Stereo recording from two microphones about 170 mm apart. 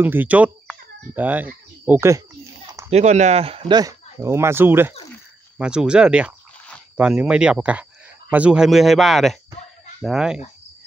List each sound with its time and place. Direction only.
0.0 s speech: 10° right (ahead or behind)
2.9 s speech: 40° right (ahead or behind); by 10.4 s 5° right (ahead or behind)